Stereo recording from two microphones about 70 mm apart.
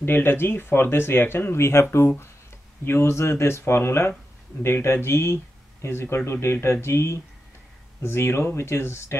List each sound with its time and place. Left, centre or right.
0.0 s speech: left